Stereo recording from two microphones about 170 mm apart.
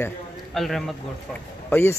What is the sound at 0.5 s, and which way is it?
Speech, centre (ahead or behind).